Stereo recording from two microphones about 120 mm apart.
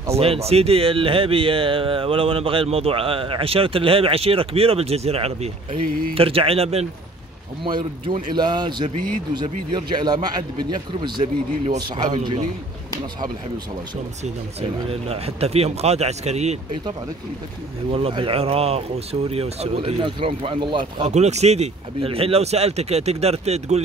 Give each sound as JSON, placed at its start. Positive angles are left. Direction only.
{"t": 0.1, "sound": "speech", "side_deg": -55}
{"t": 7.6, "sound": "speech", "side_deg": -40}
{"t": 14.2, "sound": "speech", "side_deg": -55}
{"t": 17.9, "sound": "speech", "side_deg": -50}
{"t": 21.0, "sound": "speech", "side_deg": -65}